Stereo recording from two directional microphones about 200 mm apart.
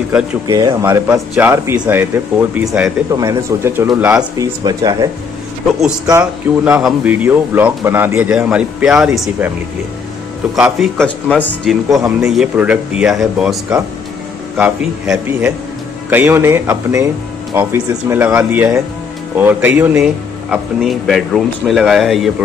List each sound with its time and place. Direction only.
0.5 s speech: 20° right (ahead or behind)
3.1 s speech: 15° right (ahead or behind)
10.5 s speech: centre (ahead or behind)